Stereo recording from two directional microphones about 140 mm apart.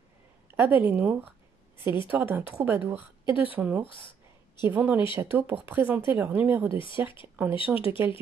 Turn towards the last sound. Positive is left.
turn(degrees=40)  # may be behind; listen again after turning